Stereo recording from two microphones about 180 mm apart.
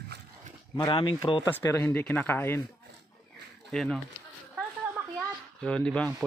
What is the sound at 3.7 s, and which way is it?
Speech, 5° left (ahead or behind).